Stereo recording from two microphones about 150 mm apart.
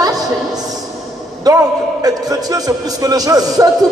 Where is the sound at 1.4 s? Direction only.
25° right (ahead or behind).